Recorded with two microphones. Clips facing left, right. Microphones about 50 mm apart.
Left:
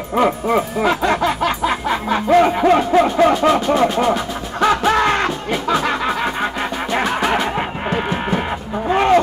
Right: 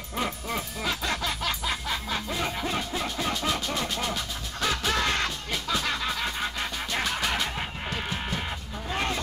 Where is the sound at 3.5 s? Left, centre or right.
Left.